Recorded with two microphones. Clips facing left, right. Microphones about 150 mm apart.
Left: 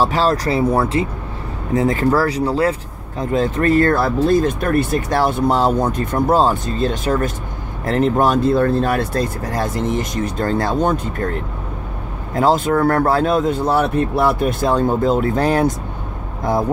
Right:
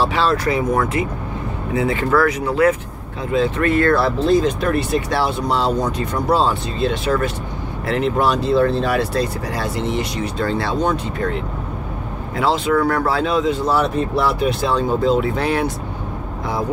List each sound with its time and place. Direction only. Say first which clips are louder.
0.0 s speech: left 1 dB; 40° left (ahead or behind)
3.2 s speech: left 1 dB; 45° left (ahead or behind)